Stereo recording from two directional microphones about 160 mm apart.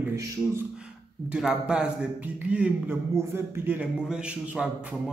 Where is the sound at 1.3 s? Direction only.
5° right (ahead or behind).